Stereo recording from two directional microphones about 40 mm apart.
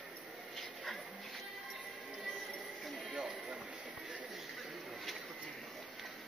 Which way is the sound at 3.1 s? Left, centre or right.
Right.